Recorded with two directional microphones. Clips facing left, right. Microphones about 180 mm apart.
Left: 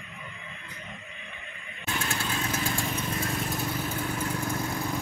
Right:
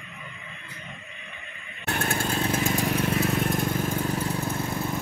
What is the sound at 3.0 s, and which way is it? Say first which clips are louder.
Vehicle: right 7 dB; 70° right (ahead or behind).